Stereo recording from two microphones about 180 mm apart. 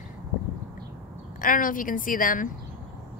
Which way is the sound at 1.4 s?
50° left (ahead or behind).